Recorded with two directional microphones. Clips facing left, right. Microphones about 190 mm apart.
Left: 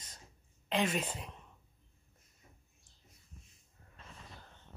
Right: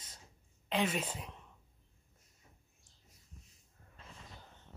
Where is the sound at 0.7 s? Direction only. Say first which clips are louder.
Left 1 dB; 5° right (ahead or behind).